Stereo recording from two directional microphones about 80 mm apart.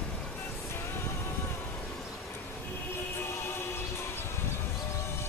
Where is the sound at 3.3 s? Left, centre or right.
Left.